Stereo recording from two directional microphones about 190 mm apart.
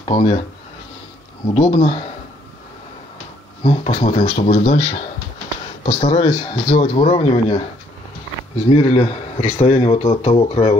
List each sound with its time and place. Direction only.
0.0 s speech: 30° left (ahead or behind)
1.5 s a man's voice: 30° left (ahead or behind)
3.6 s a man's voice: 30° left (ahead or behind)
8.6 s a man's voice: 30° left (ahead or behind)